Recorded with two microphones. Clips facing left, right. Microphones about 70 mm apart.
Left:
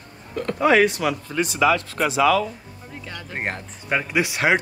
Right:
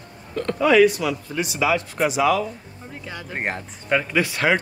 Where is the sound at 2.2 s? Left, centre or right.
Left.